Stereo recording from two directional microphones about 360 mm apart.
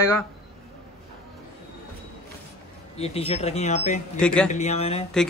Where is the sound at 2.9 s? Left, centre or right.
Centre.